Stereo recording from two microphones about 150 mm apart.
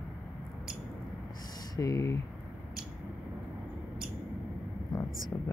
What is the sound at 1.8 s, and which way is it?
Speech, 20° left (ahead or behind).